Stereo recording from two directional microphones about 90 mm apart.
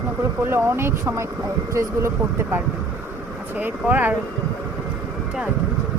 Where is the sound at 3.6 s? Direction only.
20° right (ahead or behind).